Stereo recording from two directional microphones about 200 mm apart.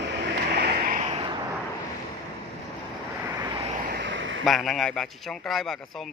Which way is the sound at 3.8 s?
60° right (ahead or behind).